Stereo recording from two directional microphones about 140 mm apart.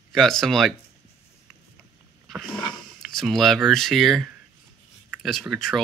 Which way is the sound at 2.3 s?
Centre (ahead or behind).